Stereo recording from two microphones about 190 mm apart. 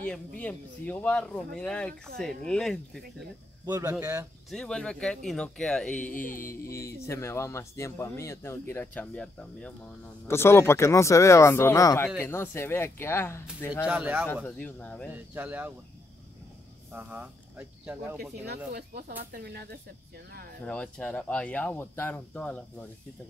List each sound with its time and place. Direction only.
0.4 s speech: 10° left (ahead or behind)
3.6 s speech: 20° right (ahead or behind)
4.5 s speech: 5° left (ahead or behind)
6.2 s music: 45° left (ahead or behind)
6.9 s speech: 15° left (ahead or behind)
13.8 s speech: 10° right (ahead or behind)
14.3 s speech: 10° left (ahead or behind)
15.1 s speech: 10° right (ahead or behind)
16.9 s speech: 10° right (ahead or behind)
18.7 s speech: 50° right (ahead or behind)
20.6 s speech: 5° left (ahead or behind)